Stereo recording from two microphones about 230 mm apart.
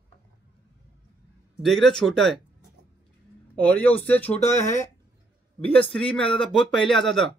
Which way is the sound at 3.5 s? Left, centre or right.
Centre.